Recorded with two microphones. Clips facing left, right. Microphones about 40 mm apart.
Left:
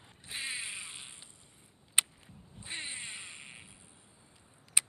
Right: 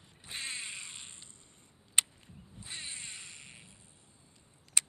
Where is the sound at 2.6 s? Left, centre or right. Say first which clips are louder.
Left 3 dB; left.